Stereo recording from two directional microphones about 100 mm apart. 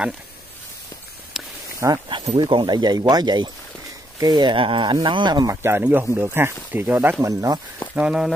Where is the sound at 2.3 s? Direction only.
55° right (ahead or behind).